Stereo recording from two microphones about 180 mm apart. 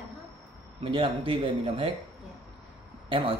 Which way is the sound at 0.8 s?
30° right (ahead or behind).